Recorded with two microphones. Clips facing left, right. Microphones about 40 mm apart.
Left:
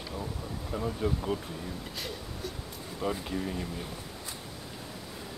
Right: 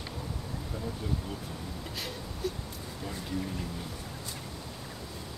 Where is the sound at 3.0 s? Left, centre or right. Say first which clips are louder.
Left 9 dB; left.